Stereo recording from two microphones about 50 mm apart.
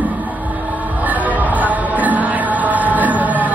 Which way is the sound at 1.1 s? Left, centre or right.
Right.